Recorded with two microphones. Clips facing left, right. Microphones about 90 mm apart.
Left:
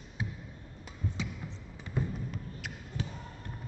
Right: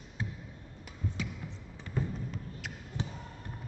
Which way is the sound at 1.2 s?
20° left (ahead or behind).